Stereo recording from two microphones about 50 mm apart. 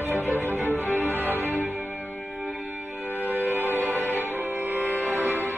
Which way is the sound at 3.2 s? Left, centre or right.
Right.